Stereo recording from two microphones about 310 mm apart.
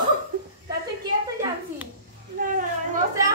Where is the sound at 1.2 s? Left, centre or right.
Centre.